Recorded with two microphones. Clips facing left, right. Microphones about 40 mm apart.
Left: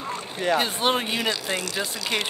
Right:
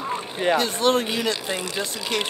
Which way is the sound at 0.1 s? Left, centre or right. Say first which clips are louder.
Right 2 dB; right.